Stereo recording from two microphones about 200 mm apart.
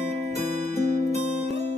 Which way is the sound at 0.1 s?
35° right (ahead or behind).